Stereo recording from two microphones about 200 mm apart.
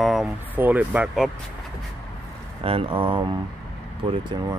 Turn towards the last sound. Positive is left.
turn(degrees=-25)  # may be behind; listen again after turning